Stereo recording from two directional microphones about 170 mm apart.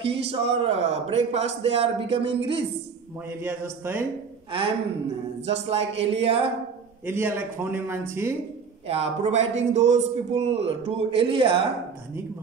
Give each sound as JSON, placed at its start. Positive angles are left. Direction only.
{"t": 0.0, "sound": "a man's voice", "side_deg": -35}
{"t": 3.3, "sound": "speech", "side_deg": -15}
{"t": 4.5, "sound": "a man's voice", "side_deg": -30}
{"t": 7.1, "sound": "speech", "side_deg": -15}
{"t": 8.8, "sound": "a man's voice", "side_deg": -35}